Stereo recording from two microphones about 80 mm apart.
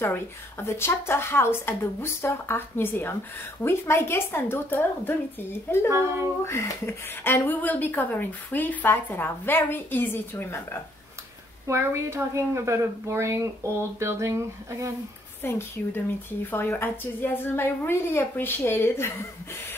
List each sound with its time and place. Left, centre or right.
0.0 s a woman's voice: left
11.6 s a woman's voice: right
15.4 s speech: left